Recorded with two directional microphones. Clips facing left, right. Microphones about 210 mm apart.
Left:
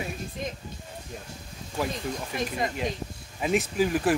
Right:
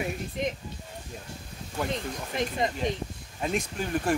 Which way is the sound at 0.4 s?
20° right (ahead or behind).